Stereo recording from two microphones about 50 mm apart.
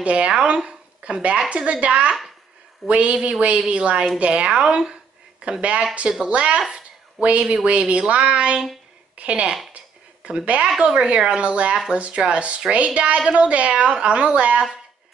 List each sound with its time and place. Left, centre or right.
0.0 s a woman's voice: right
9.8 s a sound: right
11.0 s a woman's voice: centre
11.7 s a woman's voice: centre